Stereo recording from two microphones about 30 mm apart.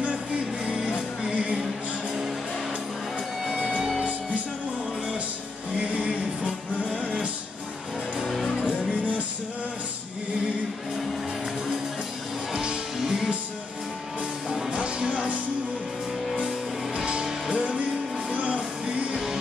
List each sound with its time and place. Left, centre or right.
0.7 s music: right
1.3 s music: right
3.4 s music: centre
5.8 s music: right
13.0 s music: centre
14.7 s music: right
16.9 s music: right
18.3 s music: right